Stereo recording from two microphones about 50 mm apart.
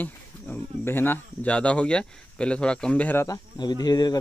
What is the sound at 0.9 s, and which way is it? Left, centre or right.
Speech, left.